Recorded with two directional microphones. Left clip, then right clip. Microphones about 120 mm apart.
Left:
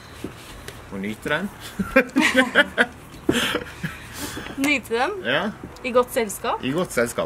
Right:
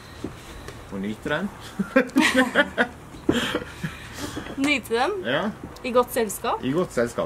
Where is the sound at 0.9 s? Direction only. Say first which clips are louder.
Left 1 dB; 15° left (ahead or behind).